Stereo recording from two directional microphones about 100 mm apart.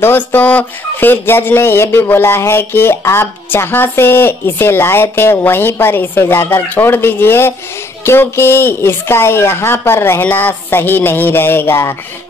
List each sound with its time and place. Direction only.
0.0 s speech: 20° left (ahead or behind)